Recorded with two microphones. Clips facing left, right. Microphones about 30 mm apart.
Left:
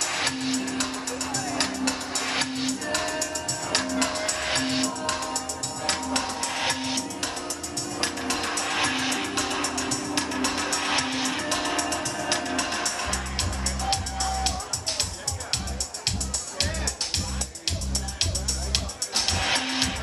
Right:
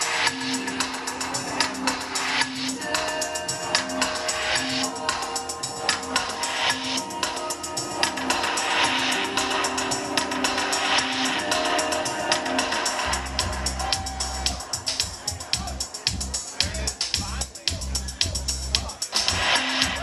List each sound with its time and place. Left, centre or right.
0.0 s music: right
3.1 s music: right
3.6 s music: right
5.0 s music: right
18.2 s music: right